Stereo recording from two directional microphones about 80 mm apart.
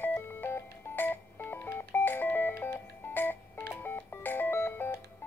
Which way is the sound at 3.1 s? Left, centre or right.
Left.